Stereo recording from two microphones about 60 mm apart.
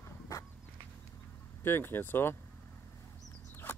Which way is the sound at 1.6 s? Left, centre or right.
Left.